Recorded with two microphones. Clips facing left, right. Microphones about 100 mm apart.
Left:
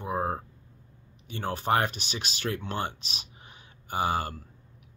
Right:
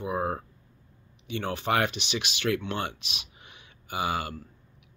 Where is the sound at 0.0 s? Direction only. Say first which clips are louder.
Even; 40° left (ahead or behind).